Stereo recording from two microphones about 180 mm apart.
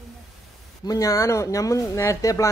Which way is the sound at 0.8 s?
20° left (ahead or behind).